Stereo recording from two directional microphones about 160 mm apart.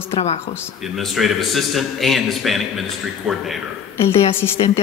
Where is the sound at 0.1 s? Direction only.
45° left (ahead or behind).